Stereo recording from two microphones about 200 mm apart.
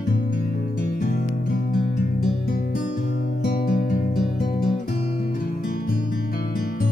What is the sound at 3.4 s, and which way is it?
Music, 45° left (ahead or behind).